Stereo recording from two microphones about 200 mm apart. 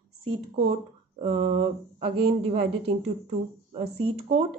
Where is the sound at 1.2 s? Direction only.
35° right (ahead or behind).